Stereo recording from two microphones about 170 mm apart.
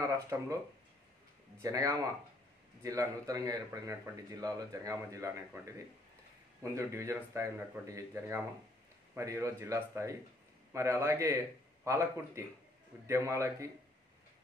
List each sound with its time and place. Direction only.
0.0 s speech: 20° right (ahead or behind)
1.6 s a man's voice: 20° right (ahead or behind)